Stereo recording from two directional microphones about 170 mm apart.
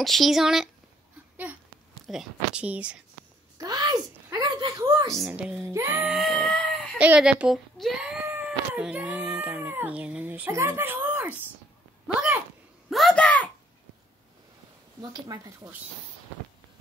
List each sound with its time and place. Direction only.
0.0 s speech: centre (ahead or behind)
1.3 s a sound: 10° right (ahead or behind)
2.0 s speech: 5° right (ahead or behind)
3.5 s a woman's voice: 20° right (ahead or behind)
5.3 s speech: 5° right (ahead or behind)
6.1 s baby cry: centre (ahead or behind)
7.0 s speech: 5° right (ahead or behind)
12.9 s a child's voice: 5° left (ahead or behind)
15.0 s speech: 25° right (ahead or behind)